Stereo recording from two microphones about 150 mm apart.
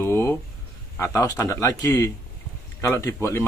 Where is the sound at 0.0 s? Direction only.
15° left (ahead or behind).